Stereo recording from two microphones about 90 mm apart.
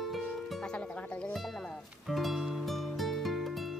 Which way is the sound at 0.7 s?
15° left (ahead or behind).